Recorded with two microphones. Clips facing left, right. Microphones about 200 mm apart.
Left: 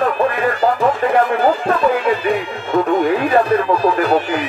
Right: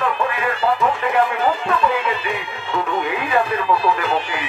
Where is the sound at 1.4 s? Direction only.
40° left (ahead or behind).